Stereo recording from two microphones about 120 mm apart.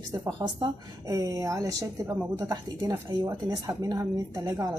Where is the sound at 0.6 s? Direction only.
30° right (ahead or behind).